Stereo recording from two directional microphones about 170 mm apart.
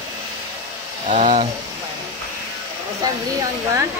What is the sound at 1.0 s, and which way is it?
Speech, 45° right (ahead or behind).